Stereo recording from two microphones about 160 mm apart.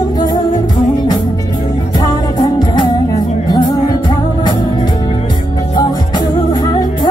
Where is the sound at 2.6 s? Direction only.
30° left (ahead or behind).